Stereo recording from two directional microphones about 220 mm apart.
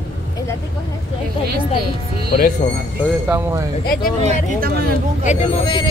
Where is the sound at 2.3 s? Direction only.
40° left (ahead or behind).